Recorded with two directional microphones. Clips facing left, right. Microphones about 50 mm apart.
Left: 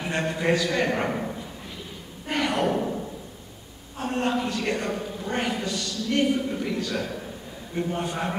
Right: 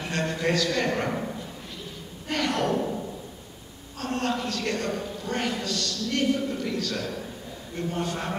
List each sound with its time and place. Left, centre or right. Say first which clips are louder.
0.0 s a man's voice: left 1 dB; centre
2.2 s gasp: left 2 dB; centre
4.0 s a man's voice: left 2 dB; centre